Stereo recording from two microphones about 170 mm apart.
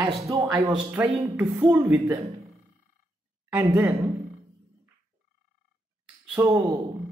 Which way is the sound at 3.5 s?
10° right (ahead or behind).